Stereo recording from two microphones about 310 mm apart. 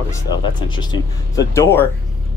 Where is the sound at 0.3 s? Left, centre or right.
Centre.